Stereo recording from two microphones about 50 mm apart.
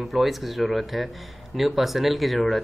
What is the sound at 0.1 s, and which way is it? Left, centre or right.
Speech, centre.